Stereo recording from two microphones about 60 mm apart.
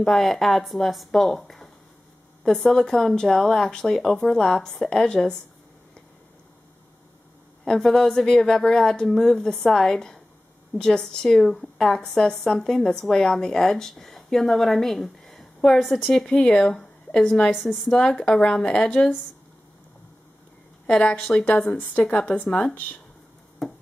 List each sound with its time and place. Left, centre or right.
0.0 s a woman's voice: centre
7.6 s a woman's voice: centre
16.1 s a woman's voice: centre
17.6 s speech: centre
17.8 s a woman's voice: centre
20.8 s a woman's voice: centre
23.6 s hands: centre